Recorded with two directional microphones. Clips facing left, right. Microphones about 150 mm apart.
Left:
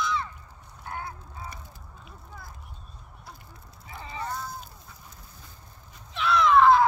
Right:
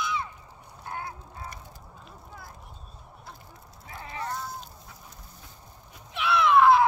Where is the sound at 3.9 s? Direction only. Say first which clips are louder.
Even; 5° right (ahead or behind).